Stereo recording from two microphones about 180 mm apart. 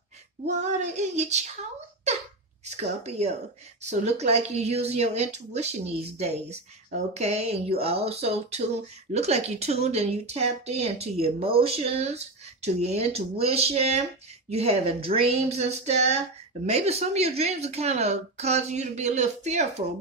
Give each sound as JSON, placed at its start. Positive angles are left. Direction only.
{"t": 0.6, "sound": "speech", "side_deg": -40}
{"t": 2.6, "sound": "speech", "side_deg": -40}